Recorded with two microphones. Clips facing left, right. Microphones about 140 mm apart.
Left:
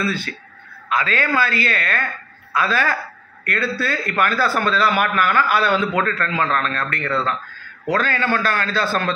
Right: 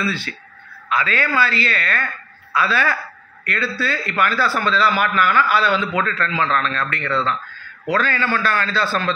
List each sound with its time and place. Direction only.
0.0 s a man's voice: 45° left (ahead or behind)